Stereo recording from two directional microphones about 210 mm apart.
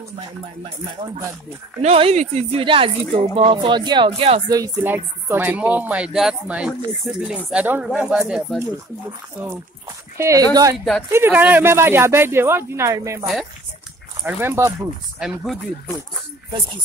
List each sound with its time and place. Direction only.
1.8 s speech: 30° right (ahead or behind); by 8.6 s 5° right (ahead or behind)
10.1 s speech: 15° right (ahead or behind)
14.2 s speech: 10° right (ahead or behind)
15.2 s speech: centre (ahead or behind)